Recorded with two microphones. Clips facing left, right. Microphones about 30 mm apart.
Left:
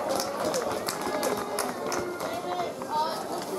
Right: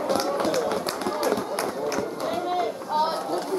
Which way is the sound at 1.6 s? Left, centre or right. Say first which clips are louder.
Right 4 dB; centre.